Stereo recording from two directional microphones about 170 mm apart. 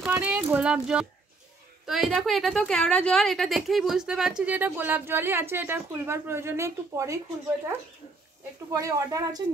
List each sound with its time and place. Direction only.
0.0 s a woman's voice: 10° right (ahead or behind)
8.7 s speech: 20° right (ahead or behind)